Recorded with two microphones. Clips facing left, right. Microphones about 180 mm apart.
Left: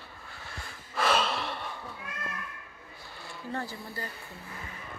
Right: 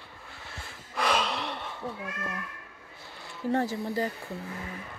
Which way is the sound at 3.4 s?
85° right.